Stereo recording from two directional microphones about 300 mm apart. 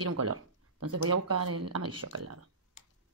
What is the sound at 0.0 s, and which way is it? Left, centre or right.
Speech, right.